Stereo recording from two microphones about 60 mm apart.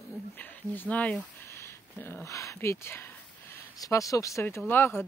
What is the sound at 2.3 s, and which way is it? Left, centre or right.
Speech, left.